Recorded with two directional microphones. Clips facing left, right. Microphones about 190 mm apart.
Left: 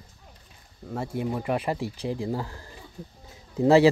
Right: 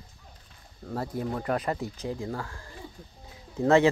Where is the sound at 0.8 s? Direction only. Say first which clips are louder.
Left 2 dB; 5° left (ahead or behind).